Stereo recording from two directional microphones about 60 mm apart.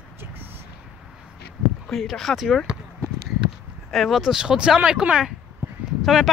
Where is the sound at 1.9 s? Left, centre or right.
Centre.